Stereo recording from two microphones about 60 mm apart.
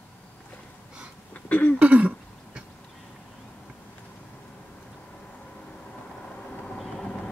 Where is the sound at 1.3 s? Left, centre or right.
Left.